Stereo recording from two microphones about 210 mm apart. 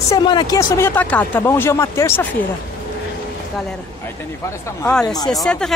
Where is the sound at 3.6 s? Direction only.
5° left (ahead or behind).